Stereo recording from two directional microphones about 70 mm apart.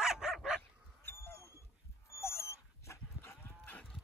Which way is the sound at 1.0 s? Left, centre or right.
Left.